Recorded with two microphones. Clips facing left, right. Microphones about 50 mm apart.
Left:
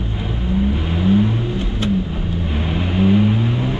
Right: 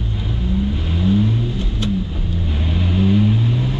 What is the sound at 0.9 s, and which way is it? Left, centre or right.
Vehicle, left.